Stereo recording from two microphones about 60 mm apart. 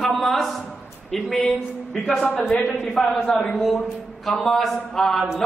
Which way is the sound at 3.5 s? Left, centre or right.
Centre.